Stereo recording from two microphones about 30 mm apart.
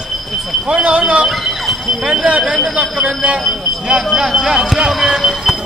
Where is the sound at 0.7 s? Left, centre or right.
Right.